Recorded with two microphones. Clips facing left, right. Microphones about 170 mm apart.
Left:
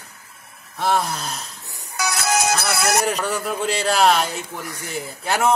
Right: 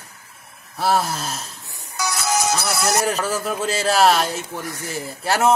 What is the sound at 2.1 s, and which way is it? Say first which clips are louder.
Music: left 1 dB; 60° left (ahead or behind).